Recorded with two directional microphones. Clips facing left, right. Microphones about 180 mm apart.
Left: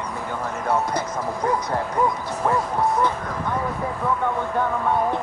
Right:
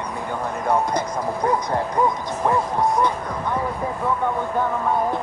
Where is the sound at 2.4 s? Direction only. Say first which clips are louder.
Right 1 dB; 15° right (ahead or behind).